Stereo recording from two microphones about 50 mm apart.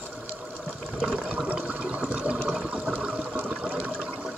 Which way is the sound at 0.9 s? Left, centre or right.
Centre.